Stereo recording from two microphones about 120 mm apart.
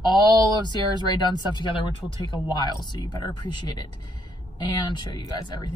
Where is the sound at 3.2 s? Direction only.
35° left (ahead or behind).